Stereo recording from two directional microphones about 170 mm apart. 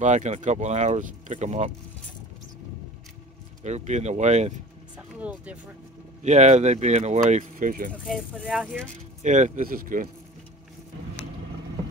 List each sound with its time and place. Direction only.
0.0 s speech: 45° right (ahead or behind)
3.6 s speech: 40° right (ahead or behind)
4.9 s speech: 5° right (ahead or behind)
6.2 s speech: 45° right (ahead or behind)
8.1 s speech: 5° right (ahead or behind)
9.2 s speech: 45° right (ahead or behind)